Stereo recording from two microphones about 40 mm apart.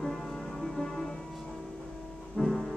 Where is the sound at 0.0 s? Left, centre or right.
Centre.